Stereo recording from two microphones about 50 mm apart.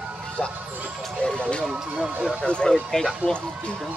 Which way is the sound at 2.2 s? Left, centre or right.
Centre.